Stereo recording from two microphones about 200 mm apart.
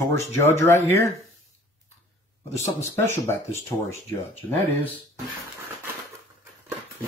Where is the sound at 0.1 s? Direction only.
10° left (ahead or behind).